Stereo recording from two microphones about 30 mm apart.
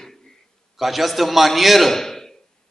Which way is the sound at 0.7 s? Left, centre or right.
Centre.